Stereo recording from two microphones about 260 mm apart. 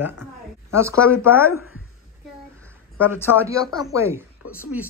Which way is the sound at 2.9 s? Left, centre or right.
Centre.